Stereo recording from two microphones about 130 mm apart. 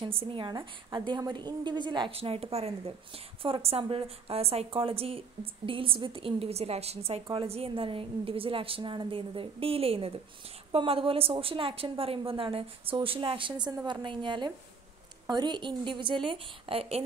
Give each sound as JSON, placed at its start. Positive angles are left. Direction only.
{"t": 0.0, "sound": "a woman's voice", "side_deg": -45}